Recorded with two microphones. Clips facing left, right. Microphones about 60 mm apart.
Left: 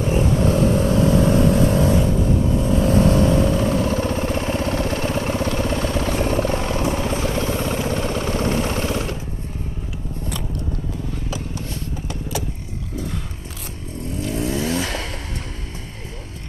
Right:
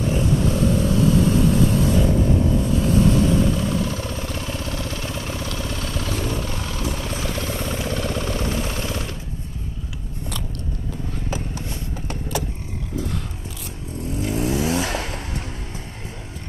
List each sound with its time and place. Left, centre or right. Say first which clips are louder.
0.0 s vehicle: left 2 dB; left
2.1 s vehicle: even; left
11.2 s a sound: even; right
12.1 s vehicle: right 1 dB; right
14.2 s vehicle: right 1 dB; right